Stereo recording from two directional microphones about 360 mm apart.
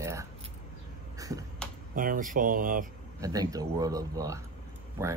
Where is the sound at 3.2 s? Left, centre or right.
Centre.